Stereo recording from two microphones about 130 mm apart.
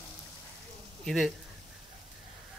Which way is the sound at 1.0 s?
Centre (ahead or behind).